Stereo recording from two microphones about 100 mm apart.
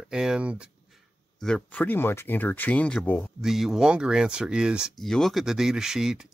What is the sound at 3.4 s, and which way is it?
Speech, 5° right (ahead or behind).